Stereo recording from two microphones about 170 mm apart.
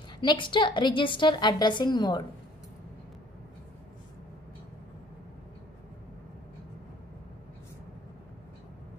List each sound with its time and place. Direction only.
0.2 s a woman's voice: 30° left (ahead or behind)